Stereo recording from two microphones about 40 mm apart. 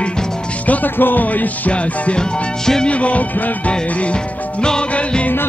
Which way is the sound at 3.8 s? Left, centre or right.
Left.